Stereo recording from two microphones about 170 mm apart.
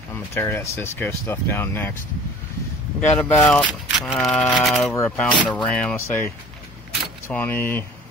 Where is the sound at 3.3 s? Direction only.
10° left (ahead or behind).